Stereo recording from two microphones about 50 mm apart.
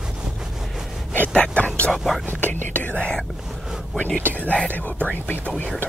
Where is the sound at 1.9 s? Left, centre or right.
Centre.